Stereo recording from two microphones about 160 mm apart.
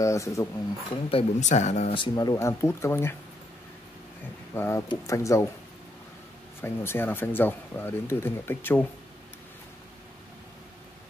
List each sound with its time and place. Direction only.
0.0 s speech: 20° left (ahead or behind)
1.1 s speech: 45° left (ahead or behind)
2.0 s speech: 25° left (ahead or behind)
4.6 s speech: 15° left (ahead or behind)
6.6 s speech: 15° left (ahead or behind)